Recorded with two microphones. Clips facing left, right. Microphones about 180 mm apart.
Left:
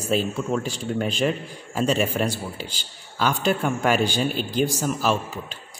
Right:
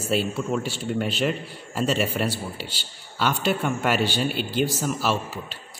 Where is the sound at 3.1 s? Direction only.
Centre (ahead or behind).